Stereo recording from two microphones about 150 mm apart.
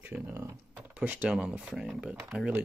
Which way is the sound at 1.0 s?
10° right (ahead or behind).